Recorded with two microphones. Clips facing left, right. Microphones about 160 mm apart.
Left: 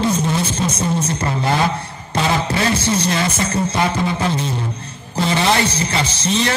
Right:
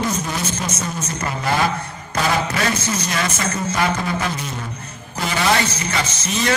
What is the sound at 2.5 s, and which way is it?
A man's voice, 30° left (ahead or behind).